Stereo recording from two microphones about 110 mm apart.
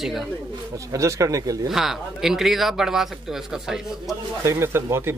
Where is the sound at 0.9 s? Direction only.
30° right (ahead or behind).